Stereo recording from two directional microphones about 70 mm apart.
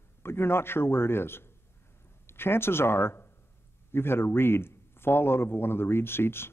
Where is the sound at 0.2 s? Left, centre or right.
Left.